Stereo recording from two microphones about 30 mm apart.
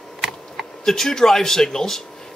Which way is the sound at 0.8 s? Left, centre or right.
Centre.